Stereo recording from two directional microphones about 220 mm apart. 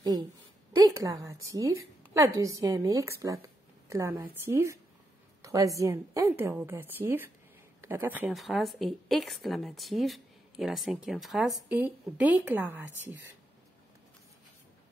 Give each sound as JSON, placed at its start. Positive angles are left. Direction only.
{"t": 0.7, "sound": "a woman's voice", "side_deg": -15}